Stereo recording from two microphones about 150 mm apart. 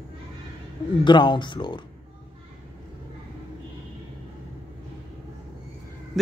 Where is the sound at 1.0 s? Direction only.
30° left (ahead or behind).